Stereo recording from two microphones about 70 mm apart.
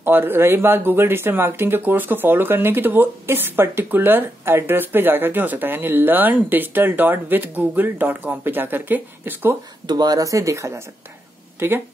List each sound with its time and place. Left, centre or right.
0.0 s speech: right
9.8 s speech: right